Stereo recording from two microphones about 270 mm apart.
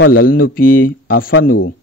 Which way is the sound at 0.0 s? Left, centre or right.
Left.